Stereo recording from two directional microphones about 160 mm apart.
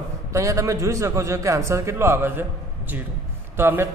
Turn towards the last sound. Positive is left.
turn(degrees=-15)  # may be behind; listen again after turning